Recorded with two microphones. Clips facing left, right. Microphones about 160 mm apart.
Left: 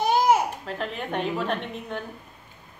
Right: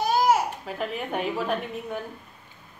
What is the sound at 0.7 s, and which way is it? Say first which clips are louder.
A woman's voice: right 1 dB; 5° right (ahead or behind).